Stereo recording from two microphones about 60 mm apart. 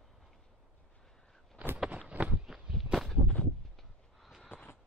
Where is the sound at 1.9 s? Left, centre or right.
Right.